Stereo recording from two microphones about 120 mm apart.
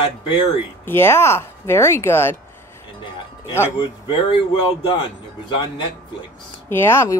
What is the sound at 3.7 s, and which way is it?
Speech, 40° left (ahead or behind).